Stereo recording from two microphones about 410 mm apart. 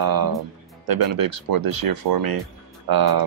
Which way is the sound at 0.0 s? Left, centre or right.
Right.